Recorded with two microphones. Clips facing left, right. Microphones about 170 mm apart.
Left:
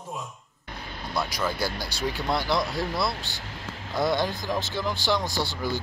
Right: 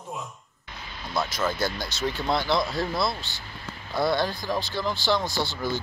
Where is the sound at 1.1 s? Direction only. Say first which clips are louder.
Right 1 dB; 10° left (ahead or behind).